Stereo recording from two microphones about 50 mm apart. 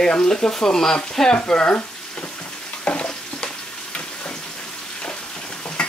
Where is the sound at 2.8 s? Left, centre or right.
Left.